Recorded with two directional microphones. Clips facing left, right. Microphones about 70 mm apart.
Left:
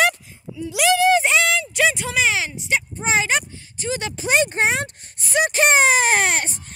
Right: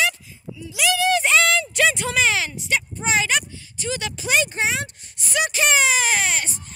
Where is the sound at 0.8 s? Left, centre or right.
Left.